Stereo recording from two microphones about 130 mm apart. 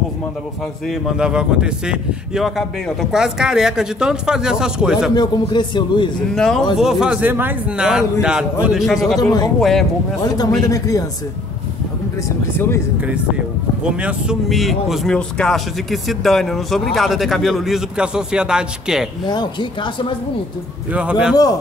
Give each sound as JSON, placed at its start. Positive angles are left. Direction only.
{"t": 0.8, "sound": "speech", "side_deg": -5}
{"t": 5.1, "sound": "a man's voice", "side_deg": 35}
{"t": 6.3, "sound": "speech", "side_deg": 5}
{"t": 9.2, "sound": "a man's voice", "side_deg": 30}
{"t": 9.6, "sound": "speech", "side_deg": 0}
{"t": 10.2, "sound": "a man's voice", "side_deg": 30}
{"t": 12.5, "sound": "speech", "side_deg": 20}
{"t": 13.8, "sound": "speech", "side_deg": -5}
{"t": 19.2, "sound": "a man's voice", "side_deg": 35}
{"t": 20.9, "sound": "a man's voice", "side_deg": -10}